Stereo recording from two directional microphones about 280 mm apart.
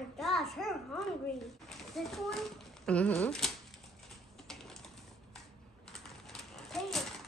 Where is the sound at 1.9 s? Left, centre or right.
Centre.